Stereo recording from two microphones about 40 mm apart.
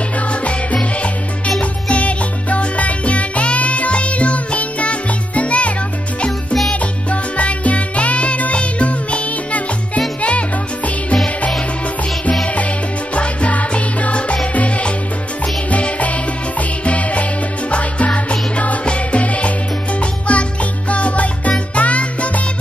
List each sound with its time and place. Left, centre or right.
0.3 s music: left
6.7 s music: left
13.1 s music: left